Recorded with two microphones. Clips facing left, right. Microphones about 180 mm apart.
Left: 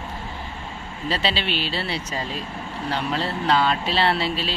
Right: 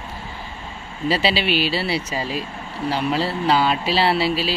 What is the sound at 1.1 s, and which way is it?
Speech, 10° right (ahead or behind).